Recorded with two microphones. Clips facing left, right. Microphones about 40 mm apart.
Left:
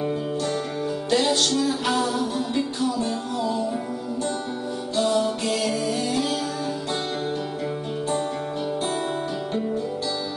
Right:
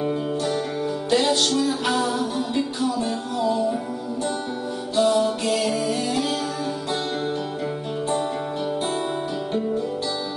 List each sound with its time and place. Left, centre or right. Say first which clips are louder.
1.1 s music: right 1 dB; centre
4.9 s music: right 3 dB; centre
5.6 s music: right 2 dB; right
5.9 s music: right 1 dB; centre